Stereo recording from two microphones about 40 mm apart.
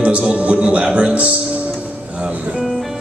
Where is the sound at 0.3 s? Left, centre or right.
Right.